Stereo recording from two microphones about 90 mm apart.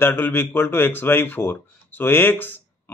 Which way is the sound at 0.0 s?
20° left (ahead or behind).